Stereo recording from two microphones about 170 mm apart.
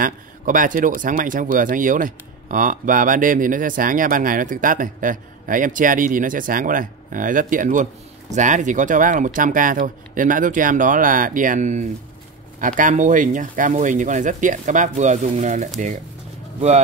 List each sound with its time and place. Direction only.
0.0 s speech: 50° right (ahead or behind)